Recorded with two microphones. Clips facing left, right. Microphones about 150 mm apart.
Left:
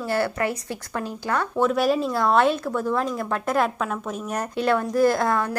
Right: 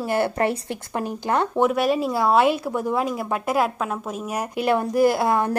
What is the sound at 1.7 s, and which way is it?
Speech, centre (ahead or behind).